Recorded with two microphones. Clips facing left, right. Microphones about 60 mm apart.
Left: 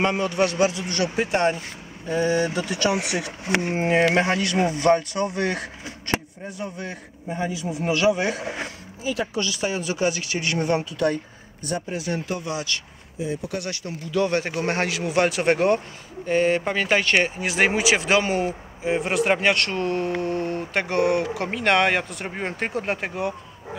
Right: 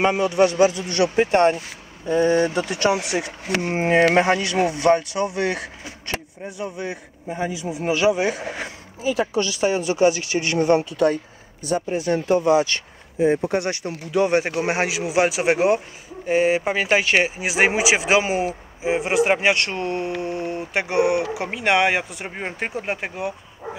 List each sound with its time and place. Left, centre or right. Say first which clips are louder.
0.0 s a woman's voice: right 4 dB; centre
1.1 s a woman's voice: right 5 dB; right
4.0 s speech: right 3 dB; centre
8.6 s a sound: right 4 dB; centre
9.4 s a woman's voice: right 5 dB; right
11.9 s a woman's voice: right 11 dB; right; by 23.8 s centre